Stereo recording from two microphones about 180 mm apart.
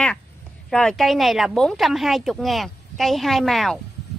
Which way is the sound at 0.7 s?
5° left (ahead or behind).